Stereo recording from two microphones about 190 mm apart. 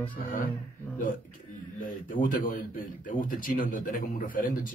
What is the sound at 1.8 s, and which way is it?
Speech, 45° left (ahead or behind).